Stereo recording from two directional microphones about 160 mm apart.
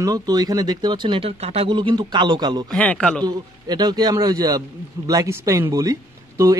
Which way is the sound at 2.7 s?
10° left (ahead or behind).